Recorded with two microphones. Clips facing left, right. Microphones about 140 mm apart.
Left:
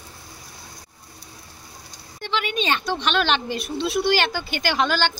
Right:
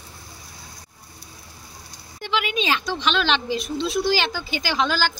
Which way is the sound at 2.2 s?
5° right (ahead or behind).